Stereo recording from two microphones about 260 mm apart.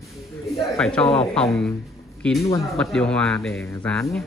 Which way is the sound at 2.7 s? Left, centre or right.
Centre.